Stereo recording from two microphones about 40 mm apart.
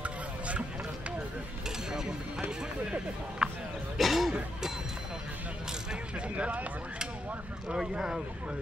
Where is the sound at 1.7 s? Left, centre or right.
Centre.